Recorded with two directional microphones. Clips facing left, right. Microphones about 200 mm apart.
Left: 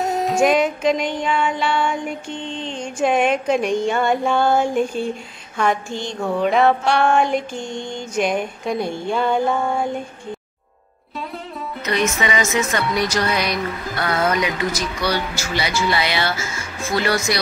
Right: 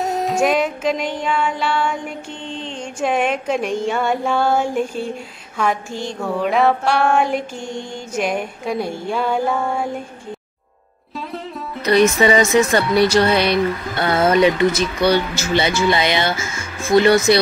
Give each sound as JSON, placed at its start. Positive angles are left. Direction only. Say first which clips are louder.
{"t": 0.0, "sound": "music", "louder": "left 1 dB", "side_deg": 0}
{"t": 2.6, "sound": "a sound", "louder": "left 2 dB", "side_deg": 0}
{"t": 11.8, "sound": "speech", "louder": "right 8 dB", "side_deg": -35}